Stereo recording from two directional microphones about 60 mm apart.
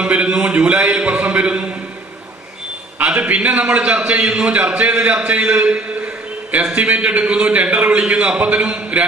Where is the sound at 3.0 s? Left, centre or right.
Right.